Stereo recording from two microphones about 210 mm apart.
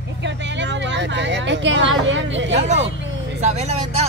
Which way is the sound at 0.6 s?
60° right (ahead or behind).